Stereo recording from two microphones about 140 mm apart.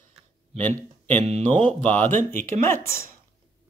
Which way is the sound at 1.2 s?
45° right (ahead or behind).